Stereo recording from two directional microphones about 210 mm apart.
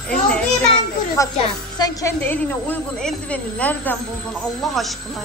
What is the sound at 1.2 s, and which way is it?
A woman's voice, 15° left (ahead or behind).